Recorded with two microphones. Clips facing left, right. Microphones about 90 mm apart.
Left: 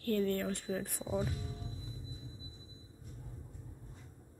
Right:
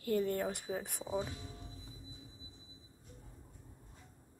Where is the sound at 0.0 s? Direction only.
15° right (ahead or behind).